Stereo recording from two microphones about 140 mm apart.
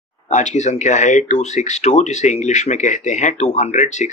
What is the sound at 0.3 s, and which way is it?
Speech, 60° left (ahead or behind).